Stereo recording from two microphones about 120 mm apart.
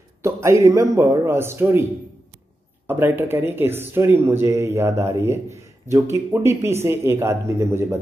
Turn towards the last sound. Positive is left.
turn(degrees=-20)  # may be behind; listen again after turning